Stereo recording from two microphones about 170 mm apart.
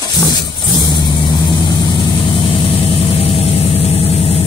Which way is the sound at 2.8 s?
35° left (ahead or behind).